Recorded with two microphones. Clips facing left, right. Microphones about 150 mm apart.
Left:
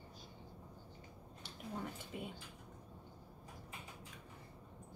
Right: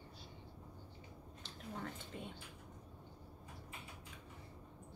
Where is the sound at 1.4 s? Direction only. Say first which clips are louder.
Left 2 dB; 10° left (ahead or behind).